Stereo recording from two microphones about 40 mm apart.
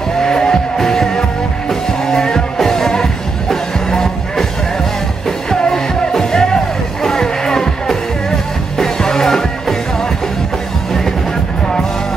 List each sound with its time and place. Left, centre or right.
0.2 s music: centre
5.6 s music: centre